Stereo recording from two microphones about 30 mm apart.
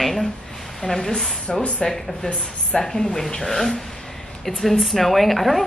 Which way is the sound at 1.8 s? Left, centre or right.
Left.